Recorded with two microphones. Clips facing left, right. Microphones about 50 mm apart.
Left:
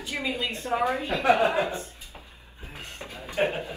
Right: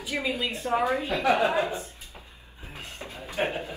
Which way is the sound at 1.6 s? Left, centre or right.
Left.